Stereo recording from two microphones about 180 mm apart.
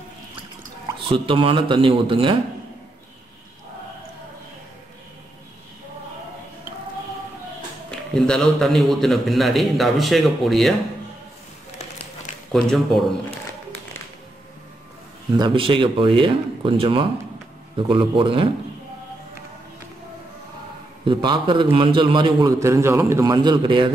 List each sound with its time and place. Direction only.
1.0 s a man's voice: 30° right (ahead or behind)
8.1 s a man's voice: 5° left (ahead or behind)
12.5 s a man's voice: centre (ahead or behind)
15.3 s a man's voice: 25° right (ahead or behind)
21.0 s a man's voice: 25° right (ahead or behind)